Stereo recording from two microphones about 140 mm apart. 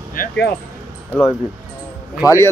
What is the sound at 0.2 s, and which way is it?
Speech, 80° left.